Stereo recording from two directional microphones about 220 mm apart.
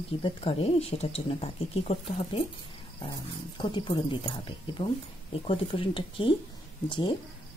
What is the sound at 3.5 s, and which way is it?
Speech, 20° left (ahead or behind).